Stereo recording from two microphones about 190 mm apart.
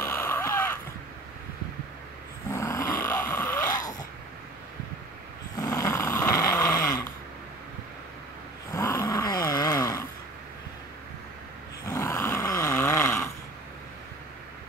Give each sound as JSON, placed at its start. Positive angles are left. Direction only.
{"t": 0.0, "sound": "a sound", "side_deg": 10}
{"t": 2.5, "sound": "dog", "side_deg": 15}
{"t": 5.6, "sound": "dog", "side_deg": 20}
{"t": 8.7, "sound": "dog", "side_deg": 15}
{"t": 11.9, "sound": "roar", "side_deg": 15}